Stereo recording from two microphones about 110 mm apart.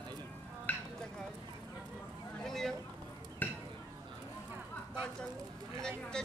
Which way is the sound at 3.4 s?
15° left (ahead or behind).